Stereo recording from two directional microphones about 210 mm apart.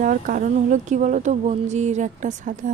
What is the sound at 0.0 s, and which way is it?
Speech, 40° right (ahead or behind).